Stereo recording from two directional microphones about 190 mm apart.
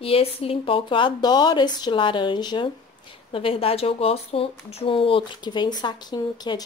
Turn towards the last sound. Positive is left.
turn(degrees=20)  # may be behind; listen again after turning